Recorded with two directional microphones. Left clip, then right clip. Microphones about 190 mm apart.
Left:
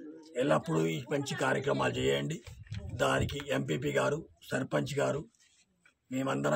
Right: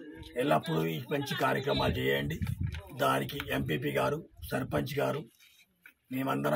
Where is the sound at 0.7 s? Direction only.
30° left (ahead or behind).